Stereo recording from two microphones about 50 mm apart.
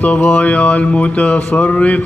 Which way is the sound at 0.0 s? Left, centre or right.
Left.